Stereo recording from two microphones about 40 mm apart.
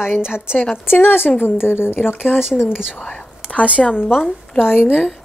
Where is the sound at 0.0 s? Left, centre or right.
Centre.